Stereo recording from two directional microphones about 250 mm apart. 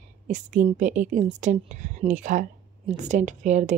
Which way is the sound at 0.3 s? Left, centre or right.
Right.